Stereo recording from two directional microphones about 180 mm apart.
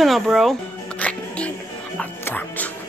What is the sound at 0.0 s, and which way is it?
Music, centre (ahead or behind).